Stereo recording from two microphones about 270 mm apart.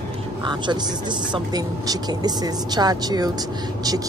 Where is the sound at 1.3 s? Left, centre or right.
Centre.